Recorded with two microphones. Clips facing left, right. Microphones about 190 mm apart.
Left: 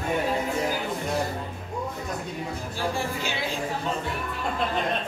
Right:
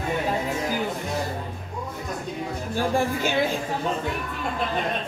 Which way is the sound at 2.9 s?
50° right (ahead or behind).